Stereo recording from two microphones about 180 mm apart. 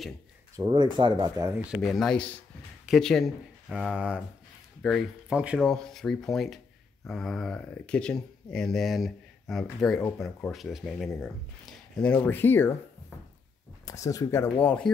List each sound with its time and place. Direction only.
0.6 s speech: 25° right (ahead or behind)
1.7 s speech: centre (ahead or behind)
11.6 s a sound: 5° left (ahead or behind)
12.2 s speech: 10° left (ahead or behind)
13.8 s speech: 20° left (ahead or behind)